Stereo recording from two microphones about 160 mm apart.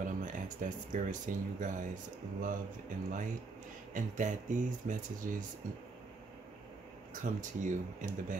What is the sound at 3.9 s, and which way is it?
Speech, 50° right (ahead or behind).